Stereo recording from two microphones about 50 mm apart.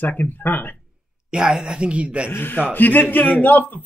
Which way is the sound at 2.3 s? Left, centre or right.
Left.